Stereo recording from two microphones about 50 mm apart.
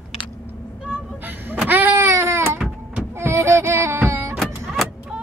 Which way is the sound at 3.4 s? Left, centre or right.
Right.